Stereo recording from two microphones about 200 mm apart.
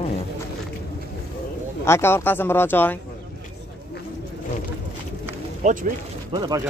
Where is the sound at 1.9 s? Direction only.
10° left (ahead or behind).